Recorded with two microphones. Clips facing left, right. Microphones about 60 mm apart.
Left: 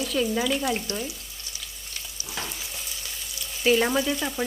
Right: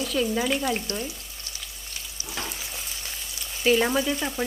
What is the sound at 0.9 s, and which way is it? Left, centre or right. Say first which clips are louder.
Speech: even; right.